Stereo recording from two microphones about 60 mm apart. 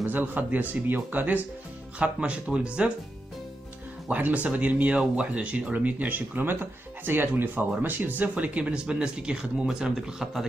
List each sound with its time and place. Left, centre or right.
0.0 s speech: right
2.0 s speech: right
4.1 s speech: right